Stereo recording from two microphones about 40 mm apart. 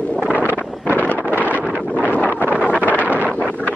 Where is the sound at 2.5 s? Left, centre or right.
Right.